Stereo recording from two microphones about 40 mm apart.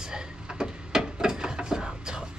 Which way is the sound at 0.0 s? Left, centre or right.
Centre.